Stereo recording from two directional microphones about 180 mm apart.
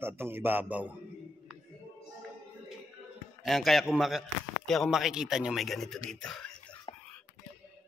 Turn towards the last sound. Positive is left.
turn(degrees=25)  # may be behind; listen again after turning